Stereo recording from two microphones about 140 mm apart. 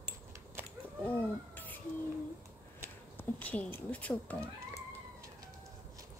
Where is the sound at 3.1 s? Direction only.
15° left (ahead or behind).